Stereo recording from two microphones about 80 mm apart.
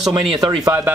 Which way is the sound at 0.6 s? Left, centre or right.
Right.